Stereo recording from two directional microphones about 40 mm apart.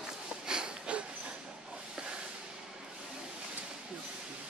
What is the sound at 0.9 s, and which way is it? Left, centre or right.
Train, right.